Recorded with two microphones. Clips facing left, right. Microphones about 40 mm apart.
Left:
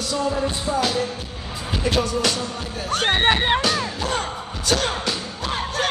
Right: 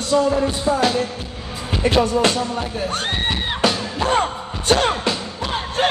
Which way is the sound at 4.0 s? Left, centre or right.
Right.